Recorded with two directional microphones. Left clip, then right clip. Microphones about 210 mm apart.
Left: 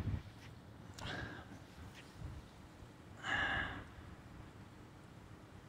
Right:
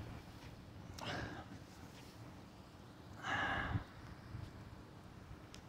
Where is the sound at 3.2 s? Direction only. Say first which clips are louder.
Left 2 dB; centre (ahead or behind).